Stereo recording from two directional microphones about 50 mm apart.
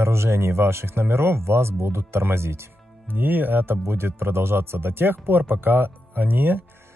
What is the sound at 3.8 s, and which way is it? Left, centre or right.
Speech, right.